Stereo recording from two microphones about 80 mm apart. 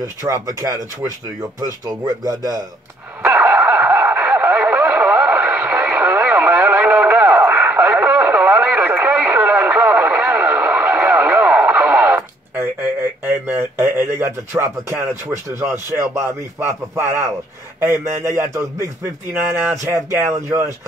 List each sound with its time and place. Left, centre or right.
0.0 s speech: right
1.9 s speech: right
3.2 s radio: centre
13.3 s speech: right